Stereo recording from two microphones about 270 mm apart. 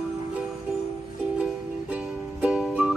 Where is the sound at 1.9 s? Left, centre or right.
Centre.